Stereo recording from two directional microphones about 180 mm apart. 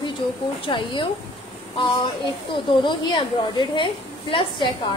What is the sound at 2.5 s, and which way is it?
A woman's voice, 25° left (ahead or behind).